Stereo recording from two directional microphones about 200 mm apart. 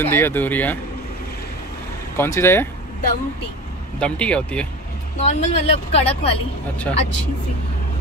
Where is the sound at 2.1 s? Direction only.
15° left (ahead or behind).